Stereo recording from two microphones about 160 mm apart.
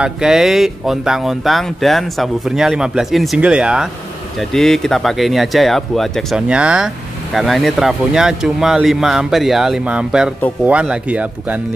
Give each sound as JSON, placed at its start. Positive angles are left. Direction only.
{"t": 0.0, "sound": "speech", "side_deg": -5}